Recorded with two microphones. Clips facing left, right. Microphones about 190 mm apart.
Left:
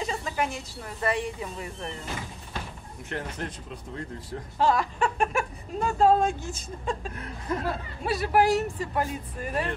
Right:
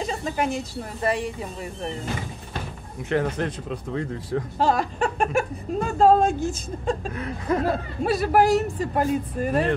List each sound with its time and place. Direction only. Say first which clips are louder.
0.0 s a sound: right 3 dB; 35° right (ahead or behind)
1.0 s speech: right 3 dB; 35° right (ahead or behind)
3.1 s speech: right 10 dB; 90° right
4.6 s speech: right 1 dB; 35° right (ahead or behind)
7.2 s speech: right 7 dB; 90° right
8.0 s speech: right 3 dB; 45° right (ahead or behind)